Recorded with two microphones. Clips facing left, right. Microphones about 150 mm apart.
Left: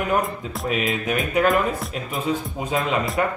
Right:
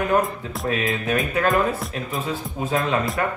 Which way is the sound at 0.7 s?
15° left (ahead or behind).